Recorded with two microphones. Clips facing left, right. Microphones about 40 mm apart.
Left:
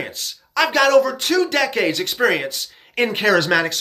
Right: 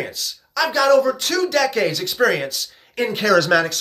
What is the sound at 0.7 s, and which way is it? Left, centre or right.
Speech, left.